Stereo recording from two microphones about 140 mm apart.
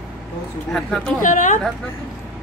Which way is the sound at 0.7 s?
5° left (ahead or behind).